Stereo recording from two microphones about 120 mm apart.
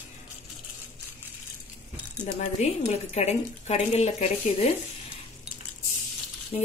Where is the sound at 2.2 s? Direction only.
70° left (ahead or behind).